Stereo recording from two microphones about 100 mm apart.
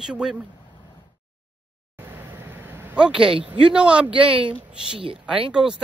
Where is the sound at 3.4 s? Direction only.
10° right (ahead or behind).